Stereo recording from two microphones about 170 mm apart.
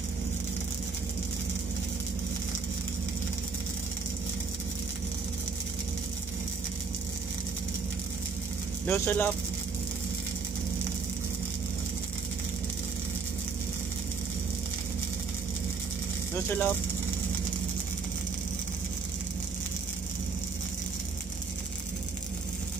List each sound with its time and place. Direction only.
8.8 s speech: 15° left (ahead or behind)
16.3 s speech: 15° left (ahead or behind)